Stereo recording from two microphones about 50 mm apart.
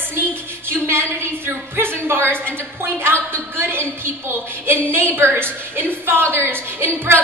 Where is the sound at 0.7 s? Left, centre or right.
Right.